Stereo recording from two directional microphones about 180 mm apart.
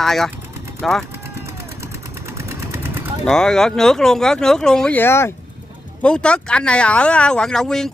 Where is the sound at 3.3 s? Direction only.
5° left (ahead or behind).